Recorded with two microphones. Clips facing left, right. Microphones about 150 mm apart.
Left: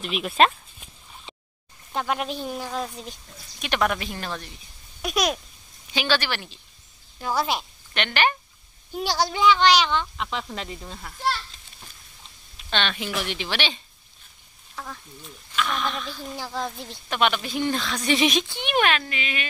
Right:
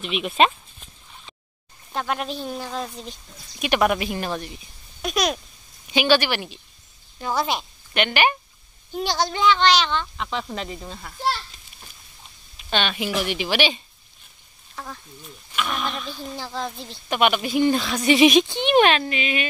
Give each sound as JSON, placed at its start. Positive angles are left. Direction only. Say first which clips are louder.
{"t": 0.0, "sound": "speech", "louder": "right 1 dB", "side_deg": 0}
{"t": 2.0, "sound": "speech", "louder": "even", "side_deg": 10}
{"t": 3.5, "sound": "speech", "louder": "right 4 dB", "side_deg": -10}
{"t": 5.0, "sound": "speech", "louder": "right 1 dB", "side_deg": 5}
{"t": 5.9, "sound": "speech", "louder": "right 6 dB", "side_deg": -15}
{"t": 7.2, "sound": "speech", "louder": "right 1 dB", "side_deg": 5}
{"t": 7.9, "sound": "speech", "louder": "right 3 dB", "side_deg": -10}
{"t": 8.9, "sound": "speech", "louder": "right 1 dB", "side_deg": 5}
{"t": 12.5, "sound": "speech", "louder": "right 3 dB", "side_deg": -10}
{"t": 14.8, "sound": "speech", "louder": "right 1 dB", "side_deg": -5}
{"t": 16.3, "sound": "speech", "louder": "even", "side_deg": 10}
{"t": 17.1, "sound": "speech", "louder": "right 4 dB", "side_deg": -10}
{"t": 18.6, "sound": "speech", "louder": "right 3 dB", "side_deg": -25}